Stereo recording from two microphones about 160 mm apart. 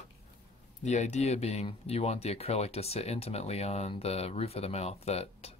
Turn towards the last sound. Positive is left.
turn(degrees=40)  # may be behind; listen again after turning